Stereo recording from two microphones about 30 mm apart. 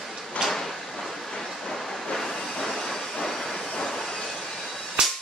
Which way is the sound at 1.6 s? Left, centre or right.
Centre.